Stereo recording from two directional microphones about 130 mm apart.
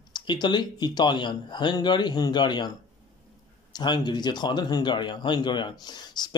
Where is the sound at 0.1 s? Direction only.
35° left (ahead or behind).